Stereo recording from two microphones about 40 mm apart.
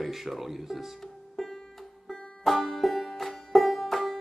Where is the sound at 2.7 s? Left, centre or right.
Centre.